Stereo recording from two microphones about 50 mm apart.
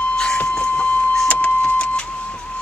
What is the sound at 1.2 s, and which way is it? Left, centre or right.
Vehicle, left.